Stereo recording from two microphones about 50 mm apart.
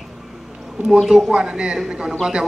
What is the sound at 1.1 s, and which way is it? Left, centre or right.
Speech, centre.